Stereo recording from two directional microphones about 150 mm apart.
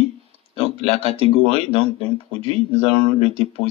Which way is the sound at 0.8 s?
40° right (ahead or behind).